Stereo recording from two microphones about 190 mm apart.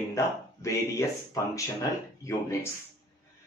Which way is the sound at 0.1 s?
15° left (ahead or behind).